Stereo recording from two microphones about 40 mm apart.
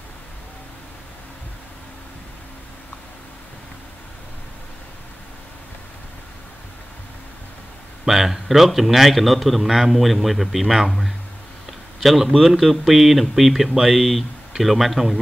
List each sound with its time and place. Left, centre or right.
8.0 s a man's voice: centre